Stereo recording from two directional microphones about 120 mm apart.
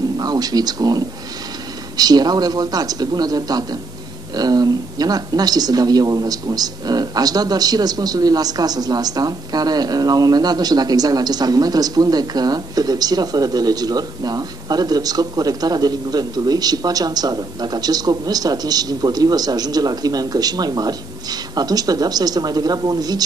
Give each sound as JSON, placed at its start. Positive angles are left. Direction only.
{"t": 0.2, "sound": "a woman's voice", "side_deg": -35}